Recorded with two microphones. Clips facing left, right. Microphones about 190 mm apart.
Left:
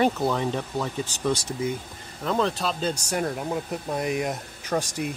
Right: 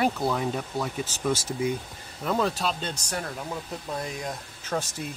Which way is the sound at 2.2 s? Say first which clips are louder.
Left 1 dB; 5° right (ahead or behind).